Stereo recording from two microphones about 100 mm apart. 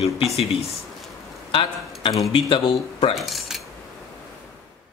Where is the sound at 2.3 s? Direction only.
55° left (ahead or behind).